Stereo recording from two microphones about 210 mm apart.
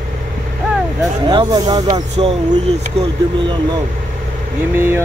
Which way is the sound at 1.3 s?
20° right (ahead or behind).